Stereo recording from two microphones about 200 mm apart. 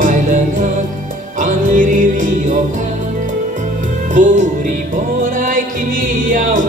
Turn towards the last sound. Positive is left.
turn(degrees=-40)  # may be behind; listen again after turning